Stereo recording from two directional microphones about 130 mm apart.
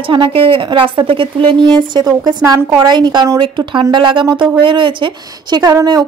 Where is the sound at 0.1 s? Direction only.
40° right (ahead or behind).